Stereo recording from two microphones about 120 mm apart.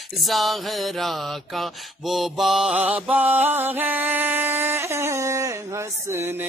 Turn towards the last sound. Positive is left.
turn(degrees=-20)  # may be behind; listen again after turning